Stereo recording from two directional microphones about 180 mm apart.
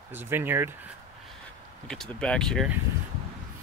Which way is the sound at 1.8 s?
5° left (ahead or behind).